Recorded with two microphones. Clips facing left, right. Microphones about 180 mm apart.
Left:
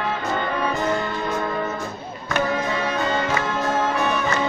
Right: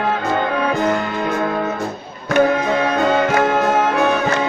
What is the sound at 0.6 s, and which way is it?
Music, 75° right (ahead or behind).